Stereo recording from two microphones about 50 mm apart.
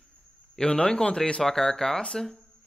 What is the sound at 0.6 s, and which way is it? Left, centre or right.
Speech, centre.